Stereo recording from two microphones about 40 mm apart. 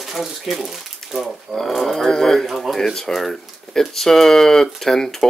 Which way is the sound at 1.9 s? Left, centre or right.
Centre.